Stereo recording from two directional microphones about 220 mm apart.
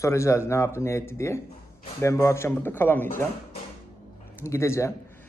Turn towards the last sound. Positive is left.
turn(degrees=15)  # may be behind; listen again after turning